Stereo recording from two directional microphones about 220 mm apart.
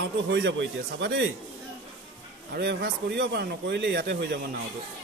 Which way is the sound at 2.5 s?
50° right (ahead or behind).